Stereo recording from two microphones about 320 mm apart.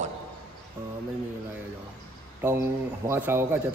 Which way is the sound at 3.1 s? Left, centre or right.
Centre.